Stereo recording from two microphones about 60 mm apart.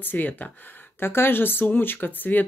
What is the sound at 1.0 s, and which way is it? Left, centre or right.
Speech, left.